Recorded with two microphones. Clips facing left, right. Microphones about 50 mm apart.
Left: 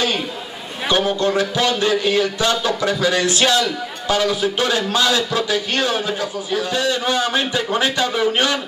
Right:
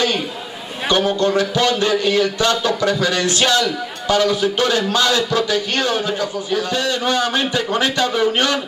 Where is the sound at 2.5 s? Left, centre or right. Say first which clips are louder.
Right 2 dB; centre.